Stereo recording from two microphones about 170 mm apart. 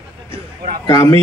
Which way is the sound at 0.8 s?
20° left (ahead or behind).